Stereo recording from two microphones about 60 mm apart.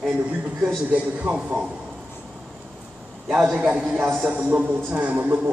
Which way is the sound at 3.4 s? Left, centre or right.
Centre.